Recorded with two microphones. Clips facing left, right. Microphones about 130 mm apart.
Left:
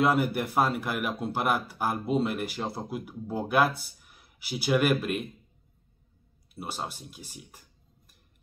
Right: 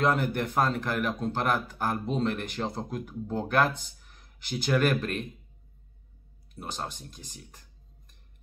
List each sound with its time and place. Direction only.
0.0 s speech: 10° left (ahead or behind)
6.5 s speech: 10° left (ahead or behind)